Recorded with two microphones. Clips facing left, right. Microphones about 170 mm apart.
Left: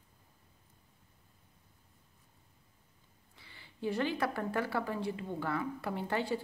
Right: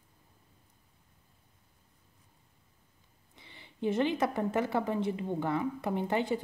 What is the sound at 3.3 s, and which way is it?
A woman's voice, 20° right (ahead or behind).